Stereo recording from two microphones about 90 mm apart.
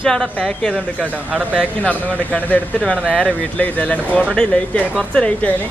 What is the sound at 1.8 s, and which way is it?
Speech, 15° left (ahead or behind).